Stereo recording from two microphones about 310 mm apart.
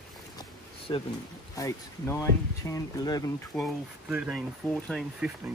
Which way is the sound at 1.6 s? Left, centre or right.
Centre.